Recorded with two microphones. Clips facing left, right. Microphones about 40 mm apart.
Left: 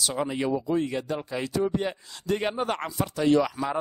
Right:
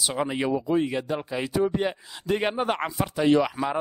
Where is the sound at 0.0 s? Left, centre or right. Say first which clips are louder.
Right 1 dB; right.